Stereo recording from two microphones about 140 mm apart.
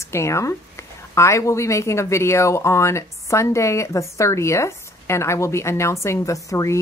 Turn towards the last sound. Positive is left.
turn(degrees=25)  # may be behind; listen again after turning